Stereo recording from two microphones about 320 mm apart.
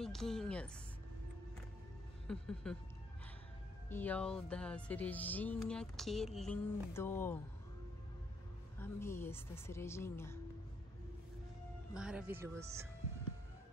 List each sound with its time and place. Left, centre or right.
0.0 s speech: centre
2.2 s speech: centre
3.9 s speech: centre
8.7 s a woman's voice: centre
11.9 s speech: centre